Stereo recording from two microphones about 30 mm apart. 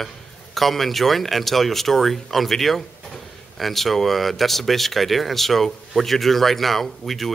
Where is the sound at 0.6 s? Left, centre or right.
Centre.